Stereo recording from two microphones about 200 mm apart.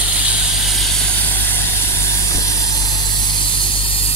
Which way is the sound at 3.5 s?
25° left (ahead or behind).